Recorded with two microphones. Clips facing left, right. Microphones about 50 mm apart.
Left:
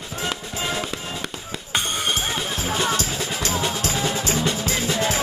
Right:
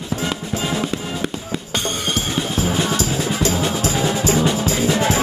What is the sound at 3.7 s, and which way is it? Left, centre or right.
Music, right.